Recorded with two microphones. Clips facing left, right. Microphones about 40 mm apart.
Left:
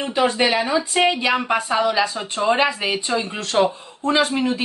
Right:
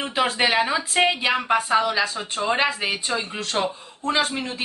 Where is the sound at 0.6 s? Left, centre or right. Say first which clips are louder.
Left 2 dB; centre.